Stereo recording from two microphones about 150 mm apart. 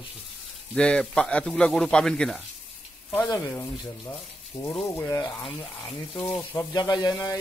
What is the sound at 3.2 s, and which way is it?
Speech, 25° left (ahead or behind).